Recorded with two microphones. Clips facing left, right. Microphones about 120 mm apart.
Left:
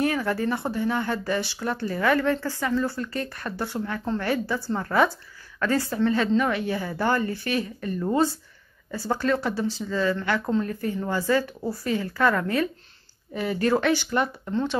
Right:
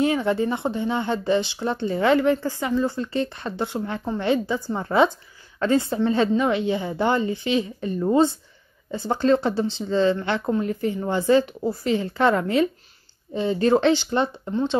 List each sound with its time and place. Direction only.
0.0 s speech: 25° right (ahead or behind)